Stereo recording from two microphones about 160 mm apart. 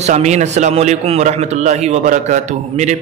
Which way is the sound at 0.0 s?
45° right (ahead or behind).